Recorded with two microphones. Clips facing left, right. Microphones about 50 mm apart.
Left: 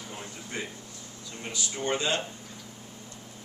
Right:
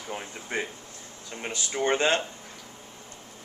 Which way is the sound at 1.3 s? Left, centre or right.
Right.